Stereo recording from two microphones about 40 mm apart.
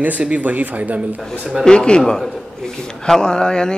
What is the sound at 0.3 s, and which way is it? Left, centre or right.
Speech, right.